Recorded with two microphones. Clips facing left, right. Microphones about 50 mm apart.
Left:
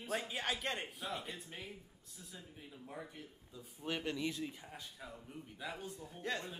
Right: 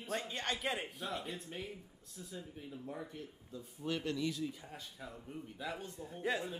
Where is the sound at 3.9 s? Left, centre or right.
Centre.